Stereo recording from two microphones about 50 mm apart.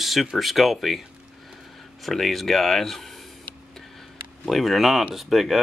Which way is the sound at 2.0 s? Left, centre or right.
Centre.